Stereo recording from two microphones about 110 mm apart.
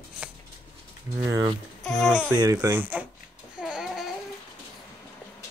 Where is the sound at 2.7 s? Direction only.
15° right (ahead or behind).